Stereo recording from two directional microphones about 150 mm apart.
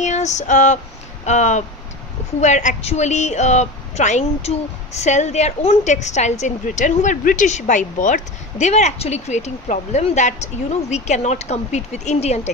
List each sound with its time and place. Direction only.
0.0 s female singing: 50° left (ahead or behind)
1.2 s a woman's voice: 50° left (ahead or behind)